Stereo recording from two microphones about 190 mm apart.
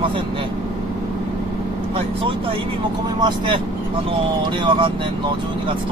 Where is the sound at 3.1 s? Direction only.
25° right (ahead or behind).